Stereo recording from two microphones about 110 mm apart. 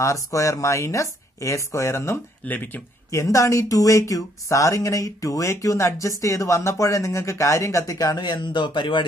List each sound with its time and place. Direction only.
0.0 s speech: 30° left (ahead or behind)
3.1 s speech: 30° left (ahead or behind); by 9.0 s 45° left (ahead or behind)